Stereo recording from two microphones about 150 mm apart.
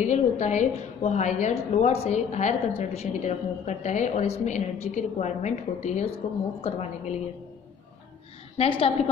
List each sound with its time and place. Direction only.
0.0 s a woman's voice: 50° left (ahead or behind)
8.5 s a woman's voice: 40° left (ahead or behind)